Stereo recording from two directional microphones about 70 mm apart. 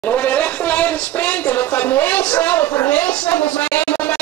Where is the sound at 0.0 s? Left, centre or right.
Left.